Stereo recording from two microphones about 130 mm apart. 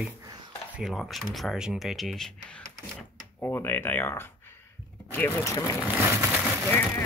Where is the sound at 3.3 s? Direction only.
15° left (ahead or behind).